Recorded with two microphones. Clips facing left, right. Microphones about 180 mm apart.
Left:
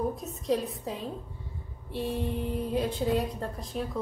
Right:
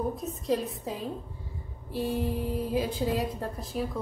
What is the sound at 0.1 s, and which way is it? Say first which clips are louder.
A woman's voice: even; centre (ahead or behind).